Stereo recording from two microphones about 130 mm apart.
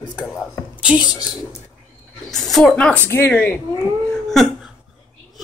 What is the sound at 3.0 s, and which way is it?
Speech, 15° left (ahead or behind).